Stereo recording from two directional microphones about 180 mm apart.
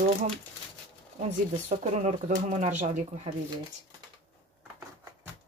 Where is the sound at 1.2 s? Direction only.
40° right (ahead or behind).